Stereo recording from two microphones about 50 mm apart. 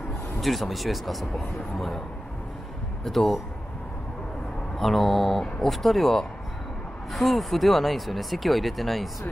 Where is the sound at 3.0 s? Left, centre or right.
Centre.